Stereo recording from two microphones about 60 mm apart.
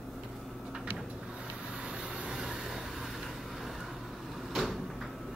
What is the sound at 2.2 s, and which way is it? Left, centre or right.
Vehicle, centre.